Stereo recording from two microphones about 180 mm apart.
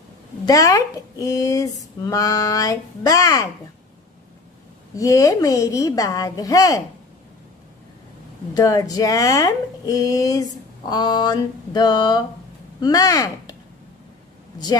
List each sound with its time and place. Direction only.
0.5 s speech: 20° left (ahead or behind)
4.9 s speech: 20° left (ahead or behind)
8.5 s speech: 20° left (ahead or behind)